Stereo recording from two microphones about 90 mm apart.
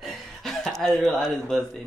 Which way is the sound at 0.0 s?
Centre (ahead or behind).